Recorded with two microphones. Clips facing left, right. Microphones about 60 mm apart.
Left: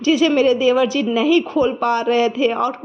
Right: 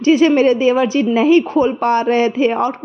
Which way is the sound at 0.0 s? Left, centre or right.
Right.